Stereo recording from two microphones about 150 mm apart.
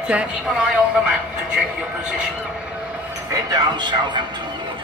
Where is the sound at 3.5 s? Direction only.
30° right (ahead or behind).